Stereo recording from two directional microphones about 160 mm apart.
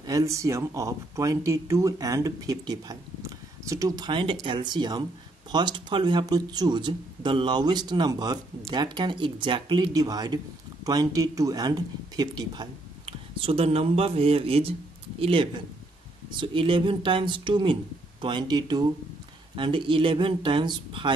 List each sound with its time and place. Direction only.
0.0 s speech: 20° right (ahead or behind)